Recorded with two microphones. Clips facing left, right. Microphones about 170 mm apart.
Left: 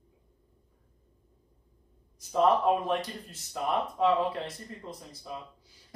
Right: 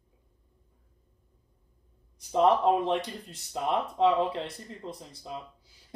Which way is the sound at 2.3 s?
30° right (ahead or behind).